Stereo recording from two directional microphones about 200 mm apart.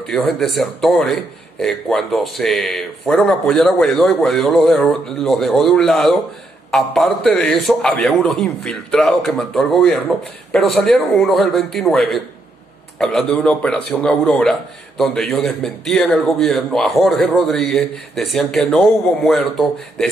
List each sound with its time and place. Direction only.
0.0 s a man's voice: 5° left (ahead or behind)